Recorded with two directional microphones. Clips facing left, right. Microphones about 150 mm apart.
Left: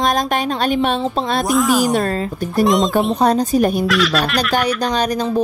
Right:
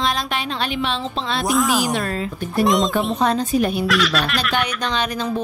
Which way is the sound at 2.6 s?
Centre (ahead or behind).